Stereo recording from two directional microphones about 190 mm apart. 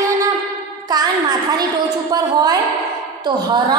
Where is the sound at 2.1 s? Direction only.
20° right (ahead or behind).